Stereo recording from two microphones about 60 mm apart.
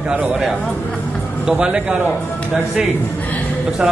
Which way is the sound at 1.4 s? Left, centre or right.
Centre.